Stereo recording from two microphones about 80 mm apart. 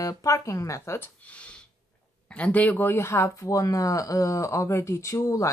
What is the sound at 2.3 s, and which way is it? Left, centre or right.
Speech, centre.